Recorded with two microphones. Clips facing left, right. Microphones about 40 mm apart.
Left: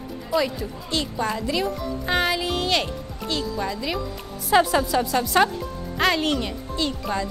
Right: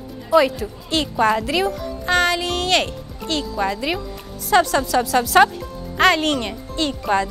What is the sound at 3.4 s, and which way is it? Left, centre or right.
Speech, right.